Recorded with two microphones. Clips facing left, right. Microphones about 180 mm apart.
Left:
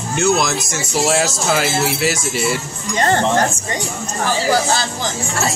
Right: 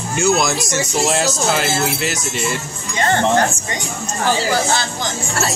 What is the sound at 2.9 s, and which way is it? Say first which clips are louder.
Speech: left 2 dB; 40° left (ahead or behind).